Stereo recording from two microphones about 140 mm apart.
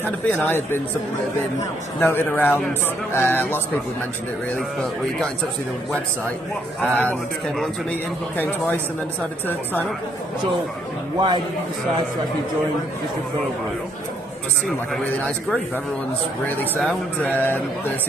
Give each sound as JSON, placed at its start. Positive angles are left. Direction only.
{"t": 0.0, "sound": "a man's voice", "side_deg": 15}
{"t": 2.0, "sound": "a man's voice", "side_deg": 15}
{"t": 6.8, "sound": "a man's voice", "side_deg": 10}
{"t": 8.4, "sound": "a man's voice", "side_deg": 15}
{"t": 11.1, "sound": "a man's voice", "side_deg": -35}
{"t": 15.2, "sound": "a man's voice", "side_deg": 5}